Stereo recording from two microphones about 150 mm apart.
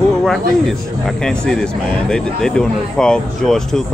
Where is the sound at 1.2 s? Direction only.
5° left (ahead or behind).